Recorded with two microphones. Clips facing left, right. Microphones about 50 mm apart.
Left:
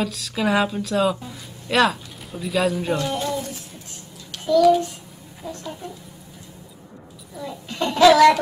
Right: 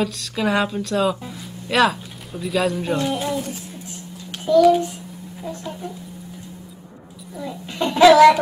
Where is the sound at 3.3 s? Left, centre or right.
Right.